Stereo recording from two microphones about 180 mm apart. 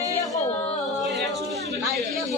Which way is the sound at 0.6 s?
Centre (ahead or behind).